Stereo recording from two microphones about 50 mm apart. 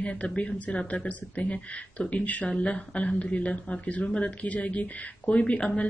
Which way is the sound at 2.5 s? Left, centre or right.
Left.